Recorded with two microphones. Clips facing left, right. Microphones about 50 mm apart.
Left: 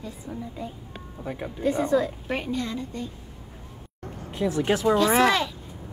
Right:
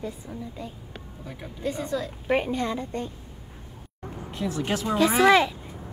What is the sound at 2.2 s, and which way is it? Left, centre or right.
Speech, centre.